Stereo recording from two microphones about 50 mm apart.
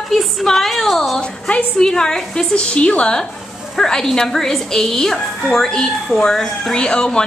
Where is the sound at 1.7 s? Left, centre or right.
Centre.